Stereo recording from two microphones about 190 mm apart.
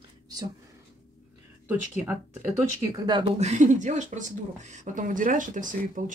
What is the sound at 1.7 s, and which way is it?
Speech, 10° right (ahead or behind).